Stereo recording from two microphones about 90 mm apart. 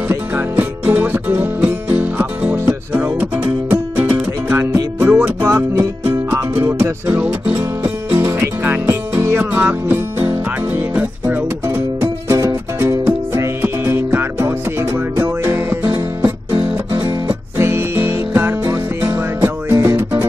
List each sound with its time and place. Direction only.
0.1 s music: 25° right (ahead or behind)
11.6 s music: 30° right (ahead or behind)
17.6 s music: 25° right (ahead or behind)